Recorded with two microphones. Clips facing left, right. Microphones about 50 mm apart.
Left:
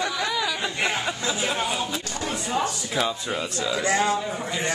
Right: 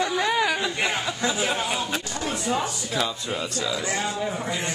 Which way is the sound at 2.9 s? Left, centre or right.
Centre.